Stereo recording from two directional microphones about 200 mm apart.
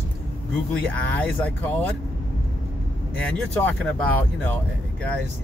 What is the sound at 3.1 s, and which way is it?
Speech, 10° left (ahead or behind).